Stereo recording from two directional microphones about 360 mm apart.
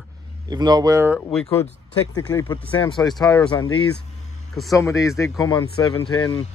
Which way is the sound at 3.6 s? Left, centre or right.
Left.